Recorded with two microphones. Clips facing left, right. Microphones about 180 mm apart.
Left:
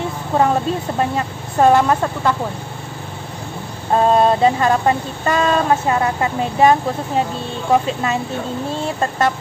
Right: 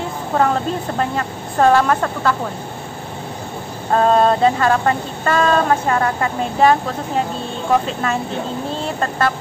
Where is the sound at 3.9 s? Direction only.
15° left (ahead or behind).